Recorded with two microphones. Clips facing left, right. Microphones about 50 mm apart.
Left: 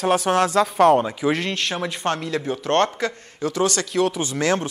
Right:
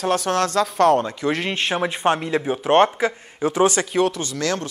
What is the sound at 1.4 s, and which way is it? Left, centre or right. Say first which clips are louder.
A man's voice: right 3 dB; centre.